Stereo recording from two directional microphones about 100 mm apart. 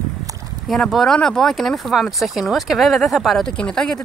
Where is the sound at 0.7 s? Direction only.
5° left (ahead or behind).